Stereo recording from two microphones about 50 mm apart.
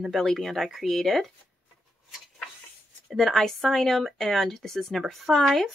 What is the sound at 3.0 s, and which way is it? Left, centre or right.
A woman's voice, centre.